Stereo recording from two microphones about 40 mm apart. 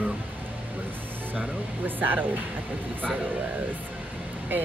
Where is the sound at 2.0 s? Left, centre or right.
Right.